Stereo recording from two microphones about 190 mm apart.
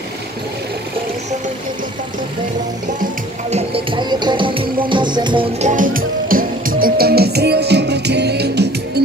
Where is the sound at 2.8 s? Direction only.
40° right (ahead or behind).